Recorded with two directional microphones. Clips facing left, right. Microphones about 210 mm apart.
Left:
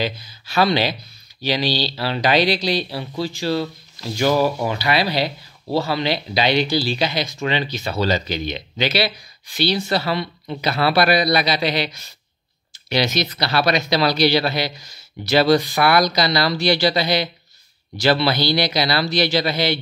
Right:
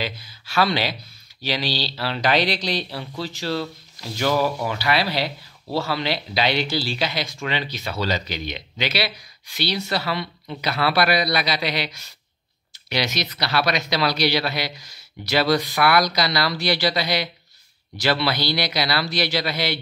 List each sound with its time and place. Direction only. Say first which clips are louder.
0.0 s speech: left 5 dB; 20° left (ahead or behind)
12.9 s speech: left 5 dB; 30° left (ahead or behind)